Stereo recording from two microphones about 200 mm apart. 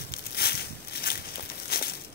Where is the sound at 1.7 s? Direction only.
50° left (ahead or behind).